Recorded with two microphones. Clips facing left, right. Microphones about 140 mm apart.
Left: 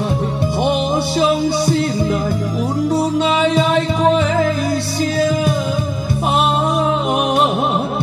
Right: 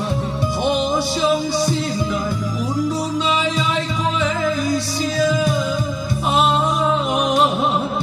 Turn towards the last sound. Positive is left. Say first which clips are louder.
# left 2 dB
turn(degrees=60)  # may be behind; listen again after turning